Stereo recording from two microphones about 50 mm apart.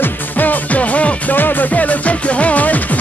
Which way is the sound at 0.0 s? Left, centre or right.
Left.